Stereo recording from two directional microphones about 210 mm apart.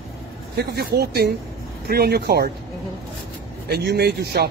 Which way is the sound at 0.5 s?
50° right (ahead or behind).